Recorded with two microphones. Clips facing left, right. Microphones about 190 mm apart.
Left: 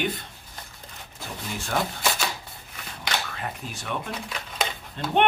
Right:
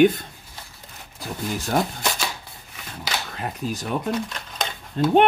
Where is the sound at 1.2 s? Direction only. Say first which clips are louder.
Right 6 dB; 40° right (ahead or behind).